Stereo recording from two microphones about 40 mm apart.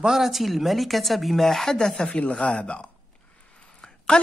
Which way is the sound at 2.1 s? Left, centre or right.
Left.